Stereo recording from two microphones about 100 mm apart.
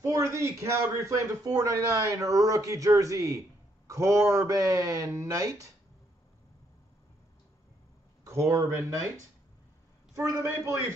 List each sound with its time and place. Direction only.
0.0 s a man's voice: 30° right (ahead or behind)
8.2 s speech: 30° right (ahead or behind)
10.1 s a woman's voice: 25° right (ahead or behind)